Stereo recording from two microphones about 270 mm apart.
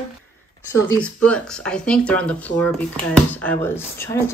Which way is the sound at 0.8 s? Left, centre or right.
Centre.